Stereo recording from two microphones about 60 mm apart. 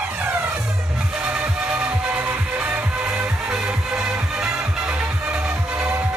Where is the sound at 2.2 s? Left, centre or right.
Right.